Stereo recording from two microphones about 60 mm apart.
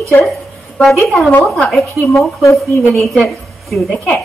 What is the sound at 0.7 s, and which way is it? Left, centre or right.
A woman's voice, centre.